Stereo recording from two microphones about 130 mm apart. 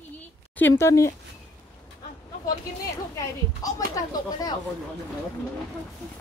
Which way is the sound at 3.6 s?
25° left (ahead or behind).